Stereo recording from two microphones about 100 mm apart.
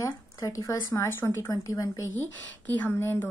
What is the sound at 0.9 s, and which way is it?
Speech, 25° left (ahead or behind).